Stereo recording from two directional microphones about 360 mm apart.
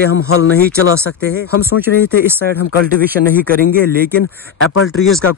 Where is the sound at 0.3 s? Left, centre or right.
Left.